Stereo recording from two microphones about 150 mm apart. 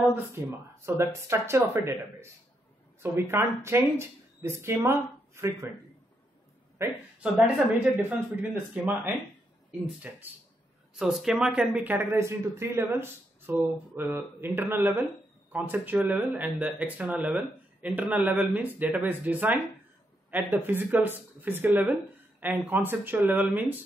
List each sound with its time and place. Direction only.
0.4 s speech: 20° right (ahead or behind)
6.8 s speech: 10° right (ahead or behind)